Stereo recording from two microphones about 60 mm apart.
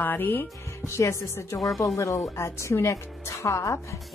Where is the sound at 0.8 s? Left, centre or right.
Left.